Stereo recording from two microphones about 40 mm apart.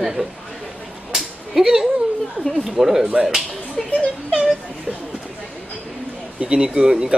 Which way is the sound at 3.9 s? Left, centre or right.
Left.